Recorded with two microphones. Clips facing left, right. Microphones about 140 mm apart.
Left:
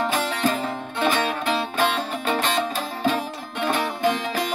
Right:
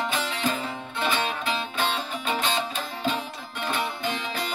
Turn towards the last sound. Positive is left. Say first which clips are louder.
# left 7 dB
turn(degrees=50)  # may be behind; listen again after turning